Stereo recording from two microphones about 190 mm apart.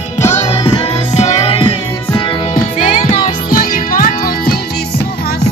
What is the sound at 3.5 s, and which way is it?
Music, 45° left (ahead or behind).